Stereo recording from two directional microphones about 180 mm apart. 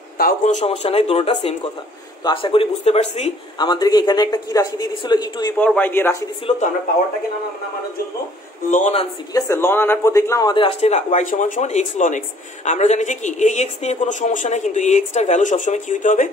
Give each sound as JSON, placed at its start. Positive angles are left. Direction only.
{"t": 0.2, "sound": "a woman's voice", "side_deg": 40}
{"t": 3.5, "sound": "speech", "side_deg": 25}
{"t": 5.6, "sound": "speech", "side_deg": 10}
{"t": 8.6, "sound": "a man's voice", "side_deg": 45}
{"t": 9.3, "sound": "a woman's voice", "side_deg": 15}